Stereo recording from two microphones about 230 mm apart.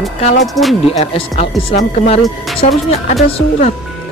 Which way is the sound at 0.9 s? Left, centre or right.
Left.